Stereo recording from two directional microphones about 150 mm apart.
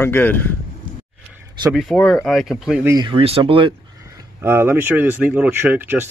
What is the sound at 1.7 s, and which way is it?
Speech, 5° left (ahead or behind).